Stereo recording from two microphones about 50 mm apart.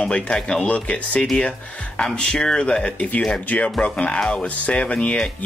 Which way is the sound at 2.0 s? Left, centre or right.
Centre.